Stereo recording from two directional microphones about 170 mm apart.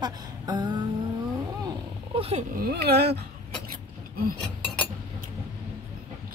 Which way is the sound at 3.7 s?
55° right (ahead or behind).